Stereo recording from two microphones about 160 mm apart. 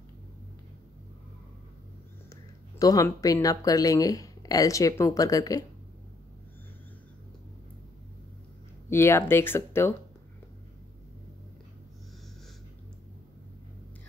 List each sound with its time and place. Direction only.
2.8 s speech: 20° left (ahead or behind)
8.9 s speech: 15° left (ahead or behind)